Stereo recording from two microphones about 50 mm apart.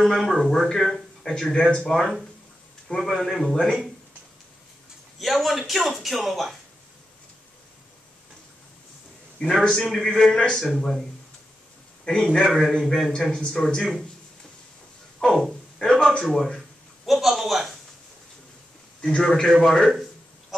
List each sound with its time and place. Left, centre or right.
0.0 s a man's voice: centre
1.5 s speech: centre
1.9 s a man's voice: centre
5.2 s a man's voice: centre
9.4 s a man's voice: centre
10.8 s a man's voice: centre
12.0 s a man's voice: centre
12.4 s a man's voice: centre
15.1 s a sound: centre
16.5 s a sound: centre
18.9 s a man's voice: centre